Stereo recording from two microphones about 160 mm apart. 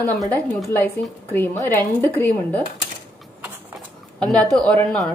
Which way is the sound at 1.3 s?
15° left (ahead or behind).